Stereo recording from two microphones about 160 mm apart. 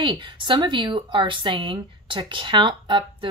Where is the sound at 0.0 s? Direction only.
30° right (ahead or behind).